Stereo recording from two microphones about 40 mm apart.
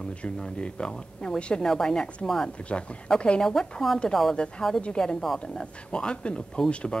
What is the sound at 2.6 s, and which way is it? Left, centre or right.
Speech, left.